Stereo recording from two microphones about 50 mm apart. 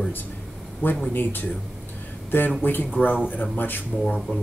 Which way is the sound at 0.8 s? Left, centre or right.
Left.